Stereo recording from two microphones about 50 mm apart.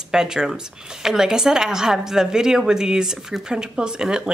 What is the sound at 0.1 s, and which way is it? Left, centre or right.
Speech, centre.